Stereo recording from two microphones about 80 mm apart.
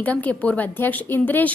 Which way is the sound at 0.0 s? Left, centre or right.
Centre.